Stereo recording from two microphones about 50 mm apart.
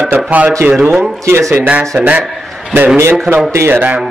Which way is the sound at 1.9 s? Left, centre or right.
Right.